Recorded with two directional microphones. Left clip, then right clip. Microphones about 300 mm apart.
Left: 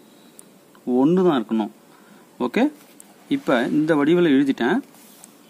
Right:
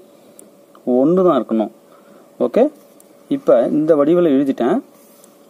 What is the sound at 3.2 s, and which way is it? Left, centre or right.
Speech, centre.